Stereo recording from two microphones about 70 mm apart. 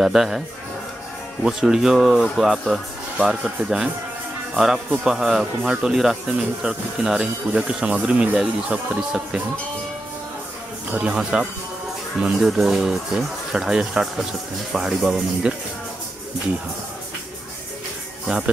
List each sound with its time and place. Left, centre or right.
0.0 s speech: centre
1.4 s speech: centre
10.9 s speech: centre
12.2 s speech: centre
18.3 s speech: centre